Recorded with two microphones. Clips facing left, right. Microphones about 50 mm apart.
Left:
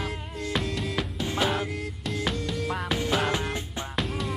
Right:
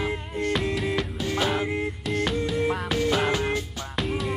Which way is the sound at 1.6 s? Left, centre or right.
Right.